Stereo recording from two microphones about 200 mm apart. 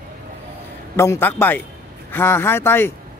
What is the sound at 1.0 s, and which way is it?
Speech, 10° left (ahead or behind).